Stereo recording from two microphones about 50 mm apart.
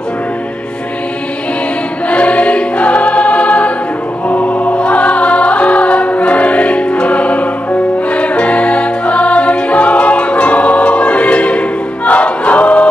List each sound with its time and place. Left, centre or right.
2.0 s choir: left
4.3 s music: left
4.7 s choir: left